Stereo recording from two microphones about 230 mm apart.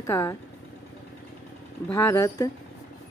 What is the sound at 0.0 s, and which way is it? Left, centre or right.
Speech, centre.